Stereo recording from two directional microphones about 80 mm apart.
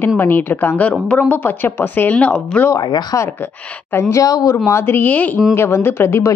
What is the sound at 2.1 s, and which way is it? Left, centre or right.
Speech, centre.